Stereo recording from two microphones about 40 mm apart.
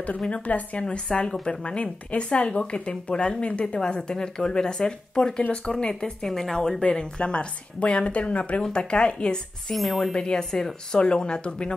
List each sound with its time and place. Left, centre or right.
0.3 s speech: left
0.8 s speech: left
6.2 s speech: centre
6.8 s speech: left
9.8 s speech: centre
10.1 s speech: left